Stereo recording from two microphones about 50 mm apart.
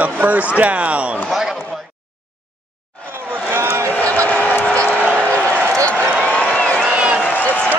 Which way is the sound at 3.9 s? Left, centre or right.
Left.